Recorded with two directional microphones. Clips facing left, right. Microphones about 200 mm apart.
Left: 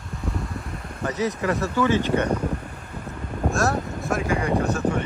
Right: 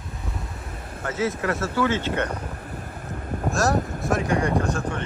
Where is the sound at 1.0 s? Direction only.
15° left (ahead or behind).